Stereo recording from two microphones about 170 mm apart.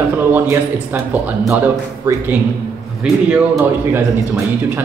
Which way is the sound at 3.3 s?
10° right (ahead or behind).